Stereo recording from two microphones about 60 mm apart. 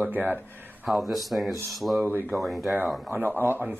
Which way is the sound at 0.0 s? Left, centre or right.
Right.